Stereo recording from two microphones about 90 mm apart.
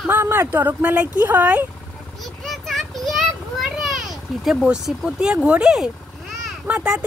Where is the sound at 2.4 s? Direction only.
Centre (ahead or behind).